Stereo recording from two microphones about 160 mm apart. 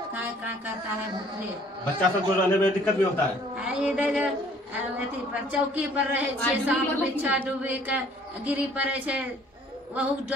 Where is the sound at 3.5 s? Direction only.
5° right (ahead or behind).